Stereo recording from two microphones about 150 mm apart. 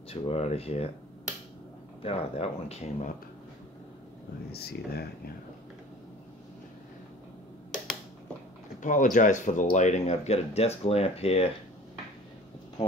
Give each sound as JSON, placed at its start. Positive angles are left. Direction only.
{"t": 0.1, "sound": "speech", "side_deg": 45}
{"t": 2.0, "sound": "speech", "side_deg": 45}
{"t": 4.5, "sound": "speech", "side_deg": 90}
{"t": 8.8, "sound": "speech", "side_deg": 60}